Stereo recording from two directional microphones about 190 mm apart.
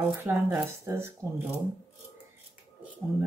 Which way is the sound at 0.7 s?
15° right (ahead or behind).